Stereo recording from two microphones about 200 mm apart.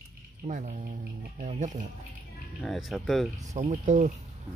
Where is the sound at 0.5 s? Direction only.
40° right (ahead or behind).